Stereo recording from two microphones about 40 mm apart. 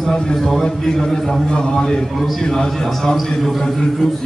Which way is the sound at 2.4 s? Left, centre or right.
Centre.